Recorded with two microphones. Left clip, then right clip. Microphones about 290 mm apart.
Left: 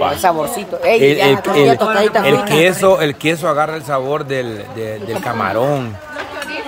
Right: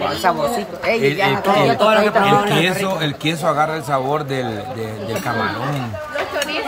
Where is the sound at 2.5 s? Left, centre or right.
Centre.